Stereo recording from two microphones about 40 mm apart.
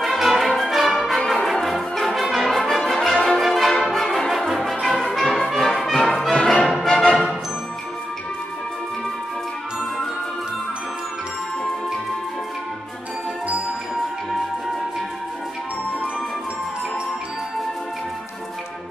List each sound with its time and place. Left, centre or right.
0.2 s music: centre
1.2 s brass instrument: centre
6.4 s music: centre